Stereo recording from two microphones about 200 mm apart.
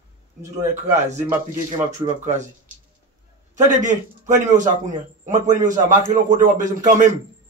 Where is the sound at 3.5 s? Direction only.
40° right (ahead or behind).